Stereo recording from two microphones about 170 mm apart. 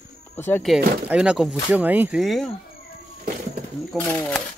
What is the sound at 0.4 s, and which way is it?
Speech, 10° left (ahead or behind).